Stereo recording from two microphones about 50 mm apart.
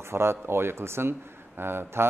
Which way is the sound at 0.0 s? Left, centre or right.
Right.